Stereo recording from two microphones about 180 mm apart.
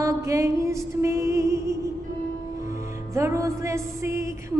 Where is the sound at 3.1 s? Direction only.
15° right (ahead or behind).